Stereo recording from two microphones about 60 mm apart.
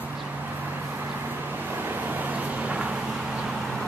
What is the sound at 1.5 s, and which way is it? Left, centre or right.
Vehicle, right.